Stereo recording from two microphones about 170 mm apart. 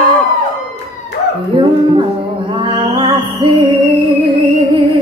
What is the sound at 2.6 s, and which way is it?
Music, 30° right (ahead or behind).